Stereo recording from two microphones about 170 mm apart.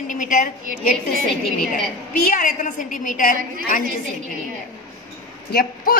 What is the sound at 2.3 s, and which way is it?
A woman's voice, 50° left (ahead or behind).